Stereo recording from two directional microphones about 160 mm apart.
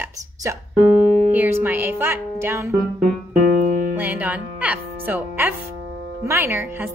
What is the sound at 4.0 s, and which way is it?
Music, 10° right (ahead or behind).